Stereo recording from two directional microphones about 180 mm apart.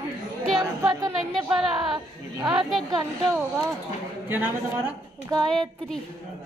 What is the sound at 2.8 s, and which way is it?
Speech, 20° right (ahead or behind).